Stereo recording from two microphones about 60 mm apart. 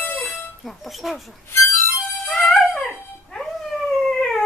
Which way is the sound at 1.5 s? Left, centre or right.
Left.